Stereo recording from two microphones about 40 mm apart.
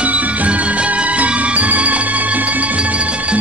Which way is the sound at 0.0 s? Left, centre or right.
Right.